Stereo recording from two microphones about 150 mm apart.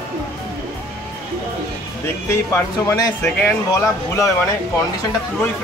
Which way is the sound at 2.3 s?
15° left (ahead or behind).